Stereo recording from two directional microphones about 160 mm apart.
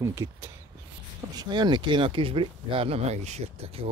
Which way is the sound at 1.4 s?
25° right (ahead or behind).